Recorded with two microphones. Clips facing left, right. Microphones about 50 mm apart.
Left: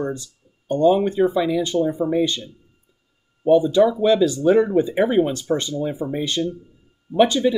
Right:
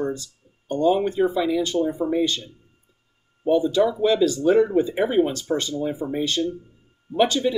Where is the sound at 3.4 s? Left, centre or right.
Left.